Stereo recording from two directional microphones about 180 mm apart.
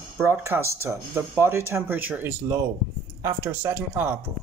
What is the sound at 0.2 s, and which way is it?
Speech, 15° right (ahead or behind).